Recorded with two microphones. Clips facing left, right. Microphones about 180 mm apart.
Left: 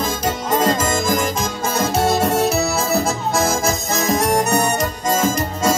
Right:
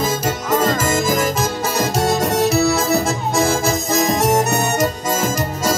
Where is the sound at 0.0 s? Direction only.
5° right (ahead or behind).